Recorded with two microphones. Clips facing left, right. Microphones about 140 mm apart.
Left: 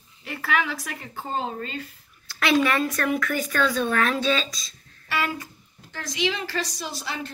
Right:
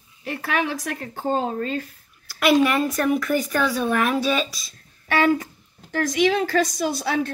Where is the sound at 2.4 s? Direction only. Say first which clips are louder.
Right 4 dB; 15° right (ahead or behind).